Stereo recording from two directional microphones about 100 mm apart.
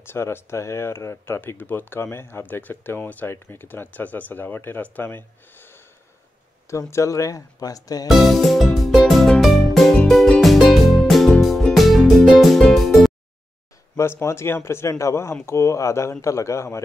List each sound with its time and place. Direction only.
0.0 s speech: 25° left (ahead or behind)
6.9 s speech: 30° left (ahead or behind)
8.1 s music: centre (ahead or behind)
13.9 s speech: 25° left (ahead or behind)